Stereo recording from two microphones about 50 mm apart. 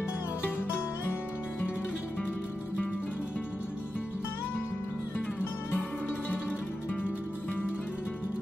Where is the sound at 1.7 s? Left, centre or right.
Centre.